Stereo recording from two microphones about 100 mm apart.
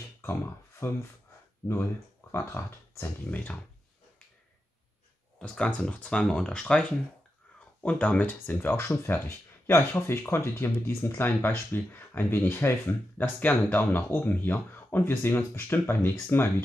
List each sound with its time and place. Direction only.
0.2 s speech: 25° left (ahead or behind)
2.3 s speech: 25° left (ahead or behind)
3.3 s speech: 15° left (ahead or behind)
5.4 s speech: 10° left (ahead or behind)